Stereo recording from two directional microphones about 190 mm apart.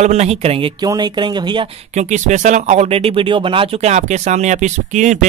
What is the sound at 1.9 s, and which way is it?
Speech, 40° right (ahead or behind).